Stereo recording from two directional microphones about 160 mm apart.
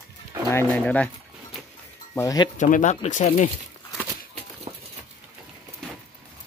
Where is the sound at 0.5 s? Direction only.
10° left (ahead or behind).